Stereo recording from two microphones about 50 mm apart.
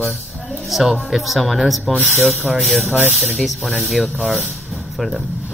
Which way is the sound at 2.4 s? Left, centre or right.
Centre.